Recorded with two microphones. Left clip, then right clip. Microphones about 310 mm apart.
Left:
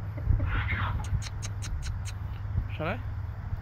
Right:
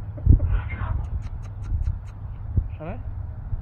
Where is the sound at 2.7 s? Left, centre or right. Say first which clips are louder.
Left 5 dB; left.